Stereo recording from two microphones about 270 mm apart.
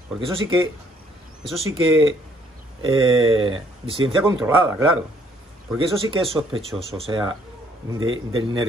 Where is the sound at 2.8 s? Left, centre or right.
Centre.